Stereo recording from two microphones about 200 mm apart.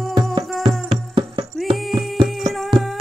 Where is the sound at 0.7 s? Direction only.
25° right (ahead or behind).